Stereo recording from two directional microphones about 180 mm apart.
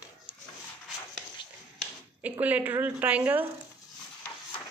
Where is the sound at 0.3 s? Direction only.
30° left (ahead or behind).